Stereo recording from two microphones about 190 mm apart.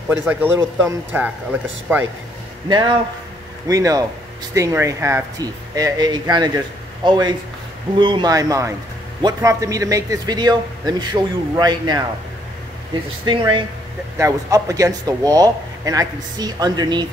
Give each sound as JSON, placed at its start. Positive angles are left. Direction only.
{"t": 0.2, "sound": "speech", "side_deg": -10}
{"t": 2.7, "sound": "a man's voice", "side_deg": -20}
{"t": 13.2, "sound": "a man's voice", "side_deg": -25}